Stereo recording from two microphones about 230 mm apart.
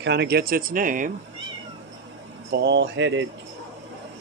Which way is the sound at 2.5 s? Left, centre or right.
Right.